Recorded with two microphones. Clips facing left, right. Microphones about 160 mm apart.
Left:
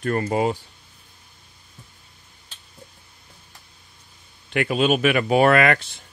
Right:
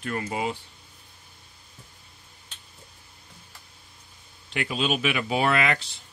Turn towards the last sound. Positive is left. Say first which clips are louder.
# left 7 dB
turn(degrees=55)  # may be behind; listen again after turning